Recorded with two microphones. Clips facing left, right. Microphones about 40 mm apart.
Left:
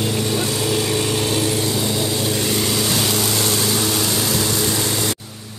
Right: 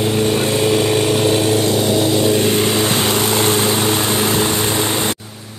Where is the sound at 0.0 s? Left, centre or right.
Right.